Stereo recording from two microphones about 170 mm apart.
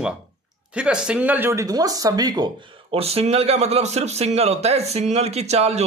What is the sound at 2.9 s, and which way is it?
A man's voice, 35° right (ahead or behind).